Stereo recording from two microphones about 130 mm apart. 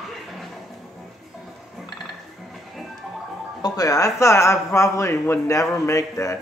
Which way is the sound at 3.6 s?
25° left (ahead or behind).